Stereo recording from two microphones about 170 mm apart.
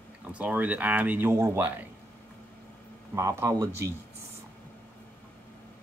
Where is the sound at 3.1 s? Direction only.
15° right (ahead or behind).